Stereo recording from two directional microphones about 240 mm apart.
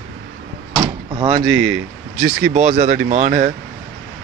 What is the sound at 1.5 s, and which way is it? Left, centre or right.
Speech, centre.